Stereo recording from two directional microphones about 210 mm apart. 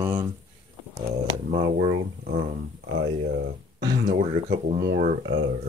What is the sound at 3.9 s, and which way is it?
Speech, 45° right (ahead or behind).